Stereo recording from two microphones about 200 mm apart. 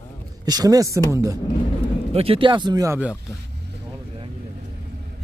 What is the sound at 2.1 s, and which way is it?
Speech, 30° right (ahead or behind).